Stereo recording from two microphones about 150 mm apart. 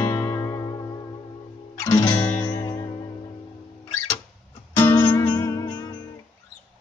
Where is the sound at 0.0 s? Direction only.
20° left (ahead or behind).